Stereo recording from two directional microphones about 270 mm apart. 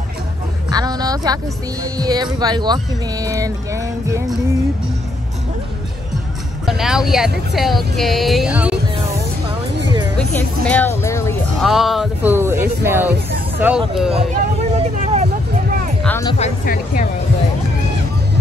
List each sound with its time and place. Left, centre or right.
0.7 s speech: centre
6.6 s speech: centre
10.3 s speech: centre
11.6 s speech: centre
14.1 s vehicle: right
16.0 s music: centre
16.3 s speech: left